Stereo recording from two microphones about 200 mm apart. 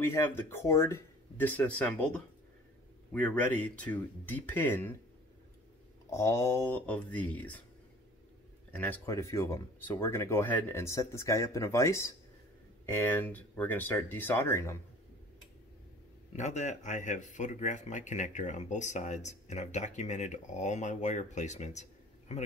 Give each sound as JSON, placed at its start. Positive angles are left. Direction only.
{"t": 0.0, "sound": "speech", "side_deg": 10}
{"t": 6.0, "sound": "speech", "side_deg": 15}
{"t": 8.7, "sound": "speech", "side_deg": 10}
{"t": 16.3, "sound": "speech", "side_deg": 35}